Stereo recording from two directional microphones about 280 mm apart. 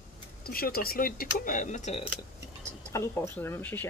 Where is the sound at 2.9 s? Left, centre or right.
Centre.